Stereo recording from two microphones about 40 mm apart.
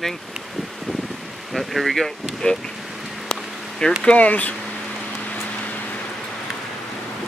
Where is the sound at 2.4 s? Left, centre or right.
Left.